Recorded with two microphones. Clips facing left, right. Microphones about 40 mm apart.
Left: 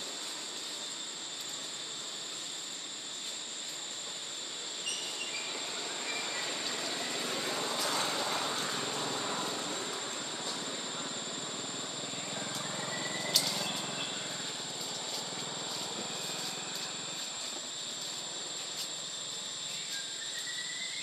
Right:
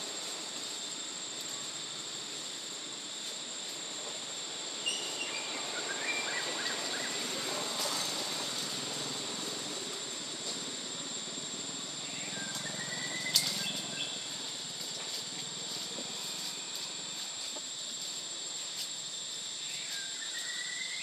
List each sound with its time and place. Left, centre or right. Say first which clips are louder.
5.0 s train: right 1 dB; centre
5.8 s vehicle: right 5 dB; centre
7.9 s vehicle: left 4 dB; left
8.9 s vehicle: left 4 dB; left
9.2 s vehicle: left 4 dB; left
12.6 s neigh: left 2 dB; left
13.3 s bird flight: left 1 dB; centre